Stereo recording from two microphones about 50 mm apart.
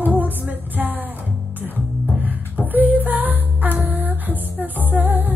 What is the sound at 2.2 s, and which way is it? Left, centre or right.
Music, right.